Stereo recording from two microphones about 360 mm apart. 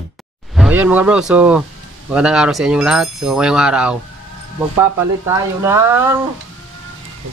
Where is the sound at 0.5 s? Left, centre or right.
Centre.